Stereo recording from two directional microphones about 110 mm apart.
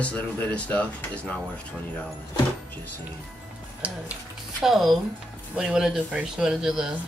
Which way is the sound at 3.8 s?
15° right (ahead or behind).